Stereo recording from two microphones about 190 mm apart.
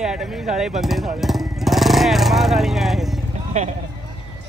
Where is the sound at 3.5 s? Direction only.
35° right (ahead or behind).